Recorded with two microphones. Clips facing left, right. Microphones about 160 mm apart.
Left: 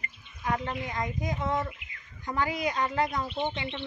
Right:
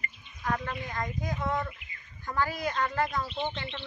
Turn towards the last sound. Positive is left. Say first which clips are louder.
# left 2 dB
turn(degrees=15)  # may be behind; listen again after turning